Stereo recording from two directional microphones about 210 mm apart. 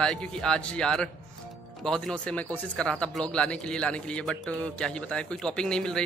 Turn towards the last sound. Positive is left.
turn(degrees=5)  # may be behind; listen again after turning